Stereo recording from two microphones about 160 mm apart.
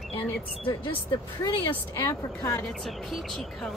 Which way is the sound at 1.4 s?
20° left (ahead or behind).